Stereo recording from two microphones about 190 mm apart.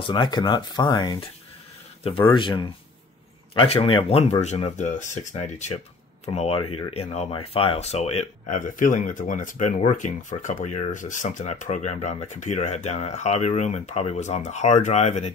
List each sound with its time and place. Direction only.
0.0 s speech: 25° left (ahead or behind)
2.3 s speech: 25° left (ahead or behind)